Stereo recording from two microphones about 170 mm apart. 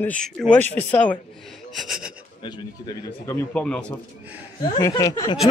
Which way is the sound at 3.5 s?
5° left (ahead or behind).